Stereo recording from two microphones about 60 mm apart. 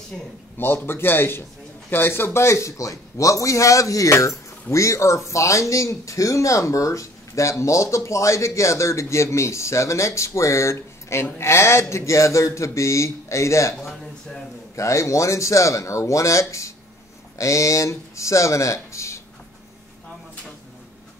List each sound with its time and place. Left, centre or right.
0.1 s speech: centre
0.6 s a man's voice: left
14.8 s a man's voice: left